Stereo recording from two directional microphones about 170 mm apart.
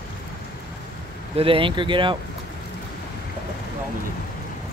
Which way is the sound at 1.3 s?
35° right (ahead or behind).